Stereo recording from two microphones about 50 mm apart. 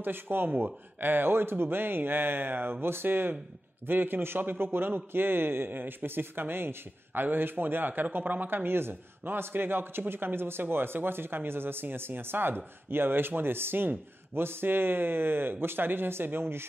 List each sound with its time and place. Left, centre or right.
0.0 s a man's voice: right